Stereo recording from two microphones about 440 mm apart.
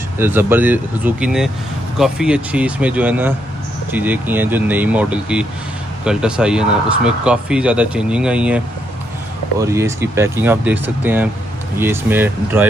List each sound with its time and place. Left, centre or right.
0.2 s speech: centre